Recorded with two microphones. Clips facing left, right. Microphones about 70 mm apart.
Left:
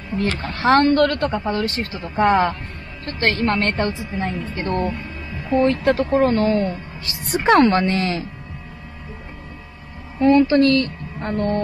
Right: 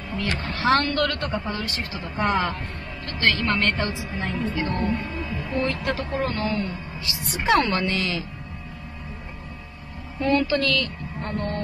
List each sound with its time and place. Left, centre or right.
0.1 s a woman's voice: left
10.1 s a woman's voice: left